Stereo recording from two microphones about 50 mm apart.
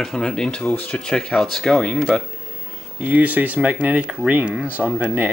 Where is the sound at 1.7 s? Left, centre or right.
Centre.